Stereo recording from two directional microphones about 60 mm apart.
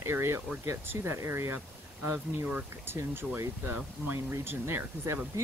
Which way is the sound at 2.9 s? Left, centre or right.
Right.